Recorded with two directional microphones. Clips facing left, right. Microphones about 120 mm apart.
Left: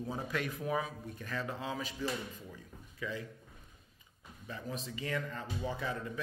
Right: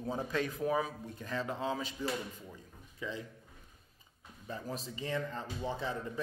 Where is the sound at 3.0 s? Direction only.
30° right (ahead or behind).